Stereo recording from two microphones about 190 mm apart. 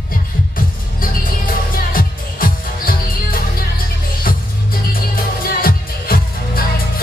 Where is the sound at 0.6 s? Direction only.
45° left (ahead or behind).